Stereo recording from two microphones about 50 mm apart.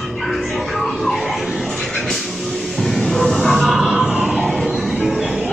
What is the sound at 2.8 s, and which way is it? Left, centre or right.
Music, centre.